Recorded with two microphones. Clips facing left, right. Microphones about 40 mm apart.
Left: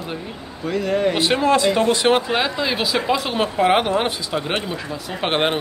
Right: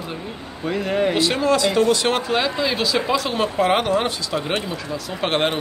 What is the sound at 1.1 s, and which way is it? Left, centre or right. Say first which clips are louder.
Speech: left 1 dB; left.